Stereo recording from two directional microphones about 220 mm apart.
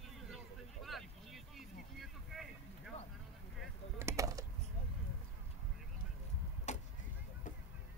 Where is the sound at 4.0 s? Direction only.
15° right (ahead or behind).